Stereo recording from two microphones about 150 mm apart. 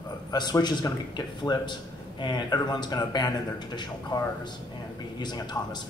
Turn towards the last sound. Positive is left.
turn(degrees=30)  # may be behind; listen again after turning